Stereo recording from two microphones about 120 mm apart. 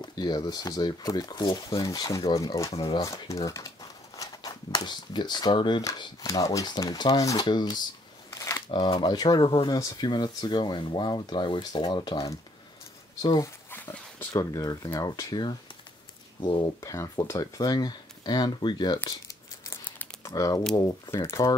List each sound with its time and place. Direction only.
0.0 s speech: 35° left (ahead or behind)
8.3 s a sound: 30° left (ahead or behind)
8.7 s speech: 35° left (ahead or behind)
13.7 s dog: 20° left (ahead or behind)
14.3 s speech: 30° left (ahead or behind)
16.8 s speech: 30° left (ahead or behind)
19.0 s crumpling: 25° left (ahead or behind)
20.2 s speech: 30° left (ahead or behind)